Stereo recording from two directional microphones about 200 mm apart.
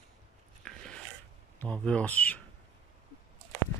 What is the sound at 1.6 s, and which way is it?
Speech, 5° left (ahead or behind).